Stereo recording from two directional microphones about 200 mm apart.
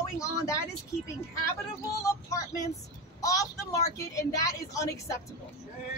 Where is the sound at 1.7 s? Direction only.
15° left (ahead or behind).